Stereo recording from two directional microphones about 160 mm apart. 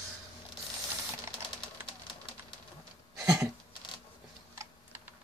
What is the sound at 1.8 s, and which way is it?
Typewriter, 30° left (ahead or behind).